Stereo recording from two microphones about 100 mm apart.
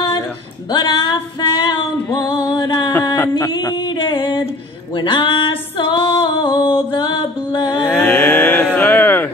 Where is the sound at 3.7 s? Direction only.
50° left (ahead or behind).